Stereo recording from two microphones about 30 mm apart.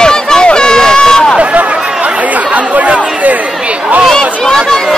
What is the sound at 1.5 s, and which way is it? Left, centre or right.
Chatter, right.